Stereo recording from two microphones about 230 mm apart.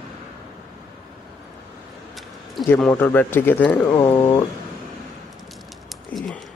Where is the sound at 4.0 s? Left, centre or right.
Centre.